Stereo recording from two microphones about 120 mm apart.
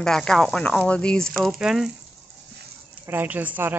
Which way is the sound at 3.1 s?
15° right (ahead or behind).